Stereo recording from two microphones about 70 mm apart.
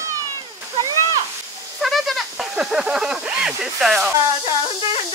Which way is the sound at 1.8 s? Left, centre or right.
Centre.